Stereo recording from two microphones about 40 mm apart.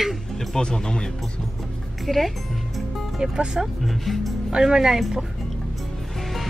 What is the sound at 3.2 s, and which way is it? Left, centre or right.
Speech, centre.